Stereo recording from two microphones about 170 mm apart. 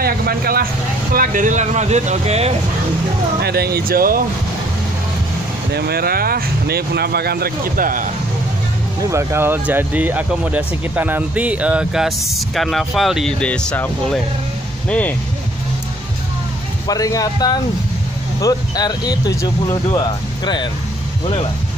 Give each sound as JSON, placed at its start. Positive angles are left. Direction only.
{"t": 0.0, "sound": "vehicle", "side_deg": -60}
{"t": 1.1, "sound": "speech", "side_deg": -55}
{"t": 3.4, "sound": "speech", "side_deg": -70}
{"t": 5.7, "sound": "speech", "side_deg": -70}
{"t": 9.1, "sound": "speech", "side_deg": -15}
{"t": 16.8, "sound": "speech", "side_deg": 20}